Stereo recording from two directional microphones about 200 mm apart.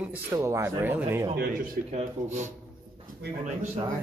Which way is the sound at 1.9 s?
35° right (ahead or behind).